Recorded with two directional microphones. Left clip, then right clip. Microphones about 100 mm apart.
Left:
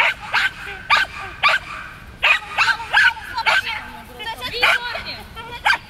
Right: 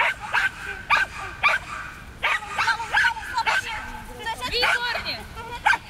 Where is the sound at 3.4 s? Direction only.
35° left (ahead or behind).